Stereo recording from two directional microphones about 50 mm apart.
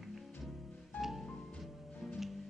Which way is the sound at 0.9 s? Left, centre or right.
Left.